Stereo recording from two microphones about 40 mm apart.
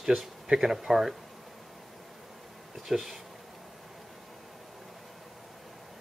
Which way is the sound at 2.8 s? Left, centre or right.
Centre.